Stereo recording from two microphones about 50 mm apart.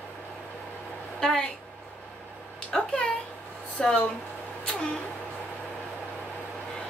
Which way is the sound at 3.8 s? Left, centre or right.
Centre.